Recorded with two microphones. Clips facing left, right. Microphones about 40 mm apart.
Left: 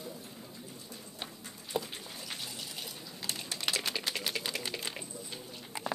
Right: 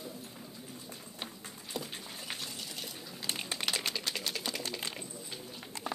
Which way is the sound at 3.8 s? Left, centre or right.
Centre.